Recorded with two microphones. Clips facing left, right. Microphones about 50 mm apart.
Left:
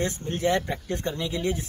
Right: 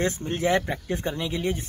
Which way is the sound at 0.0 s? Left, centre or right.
Right.